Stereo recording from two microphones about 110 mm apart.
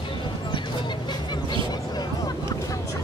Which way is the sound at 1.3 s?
40° left (ahead or behind).